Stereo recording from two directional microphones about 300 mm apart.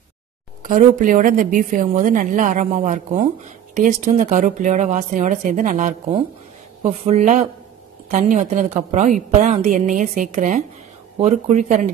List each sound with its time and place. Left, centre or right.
0.6 s a woman's voice: right